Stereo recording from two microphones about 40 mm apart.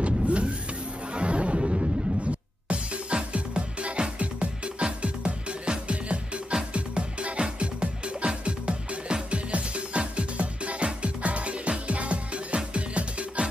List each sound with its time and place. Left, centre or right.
0.0 s vehicle: right
1.1 s music: right